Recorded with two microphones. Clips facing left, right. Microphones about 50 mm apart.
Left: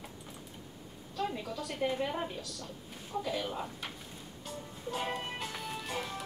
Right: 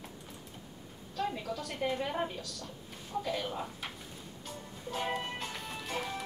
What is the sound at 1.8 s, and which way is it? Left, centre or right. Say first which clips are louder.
Speech: left 1 dB; centre.